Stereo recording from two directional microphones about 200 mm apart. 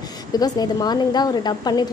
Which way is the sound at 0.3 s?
20° left (ahead or behind).